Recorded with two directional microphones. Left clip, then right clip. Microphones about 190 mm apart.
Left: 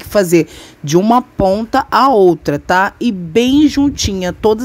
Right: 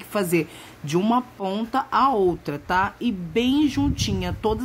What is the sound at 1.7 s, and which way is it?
A woman's voice, 45° left (ahead or behind).